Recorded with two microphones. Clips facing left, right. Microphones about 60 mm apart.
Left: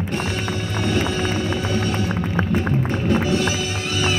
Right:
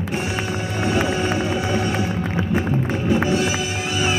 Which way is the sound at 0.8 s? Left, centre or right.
Centre.